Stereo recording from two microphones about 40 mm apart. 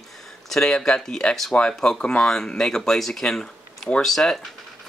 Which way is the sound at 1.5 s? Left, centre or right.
Left.